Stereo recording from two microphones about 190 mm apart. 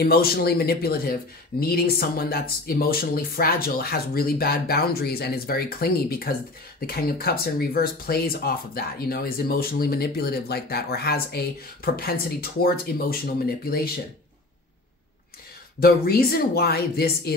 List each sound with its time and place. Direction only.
0.0 s speech: 55° left (ahead or behind)
15.8 s speech: 55° left (ahead or behind)